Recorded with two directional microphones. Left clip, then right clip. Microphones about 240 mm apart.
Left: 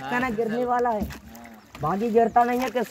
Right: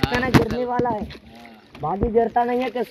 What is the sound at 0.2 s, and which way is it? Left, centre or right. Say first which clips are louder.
Speech: right 4 dB; left.